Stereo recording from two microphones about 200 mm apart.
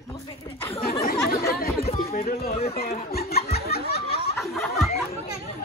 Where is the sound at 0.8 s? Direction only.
50° left (ahead or behind).